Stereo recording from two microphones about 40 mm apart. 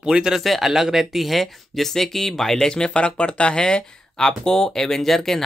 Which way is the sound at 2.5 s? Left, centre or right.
Left.